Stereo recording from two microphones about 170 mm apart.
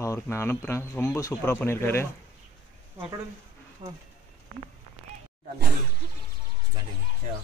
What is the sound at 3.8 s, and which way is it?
Speech, 35° right (ahead or behind).